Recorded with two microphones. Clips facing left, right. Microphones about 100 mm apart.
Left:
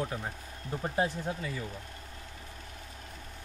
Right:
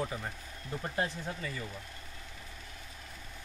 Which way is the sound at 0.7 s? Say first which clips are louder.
Left 4 dB; 25° left (ahead or behind).